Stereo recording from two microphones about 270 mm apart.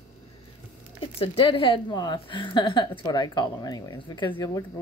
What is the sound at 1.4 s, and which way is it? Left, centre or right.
A woman's voice, centre.